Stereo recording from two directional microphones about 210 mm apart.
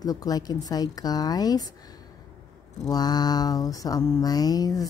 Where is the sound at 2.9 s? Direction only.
20° left (ahead or behind).